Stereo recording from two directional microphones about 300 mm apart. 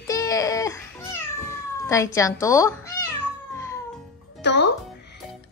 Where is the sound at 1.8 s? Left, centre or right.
Centre.